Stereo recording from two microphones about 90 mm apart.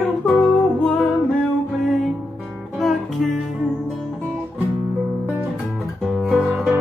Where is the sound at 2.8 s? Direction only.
Centre (ahead or behind).